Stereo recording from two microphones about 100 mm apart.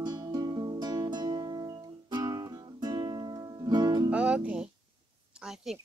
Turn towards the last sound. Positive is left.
turn(degrees=-10)  # may be behind; listen again after turning